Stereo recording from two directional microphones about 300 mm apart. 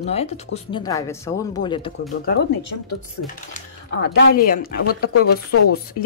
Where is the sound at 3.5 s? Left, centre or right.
Left.